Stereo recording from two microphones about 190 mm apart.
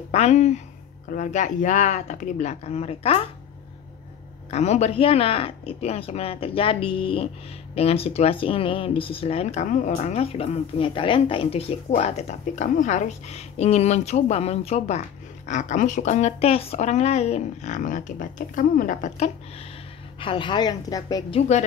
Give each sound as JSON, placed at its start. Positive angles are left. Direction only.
{"t": 0.1, "sound": "speech", "side_deg": 35}
{"t": 4.5, "sound": "speech", "side_deg": 35}
{"t": 20.2, "sound": "a woman's voice", "side_deg": 25}
{"t": 21.4, "sound": "speech", "side_deg": 35}